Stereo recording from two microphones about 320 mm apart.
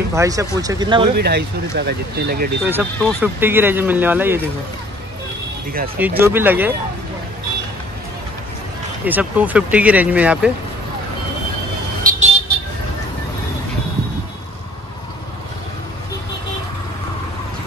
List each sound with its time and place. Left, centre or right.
0.1 s speech: centre
1.1 s speech: right
2.6 s speech: centre
5.9 s speech: centre
9.0 s speech: centre
12.0 s vehicle: right